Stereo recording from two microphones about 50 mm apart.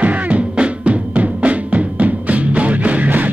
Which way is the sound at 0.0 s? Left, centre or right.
Right.